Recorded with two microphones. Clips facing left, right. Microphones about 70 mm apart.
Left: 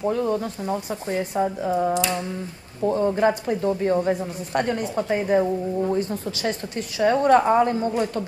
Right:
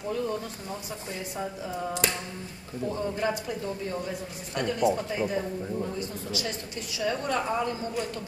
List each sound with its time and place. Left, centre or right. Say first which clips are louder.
0.0 s speech: left 8 dB; left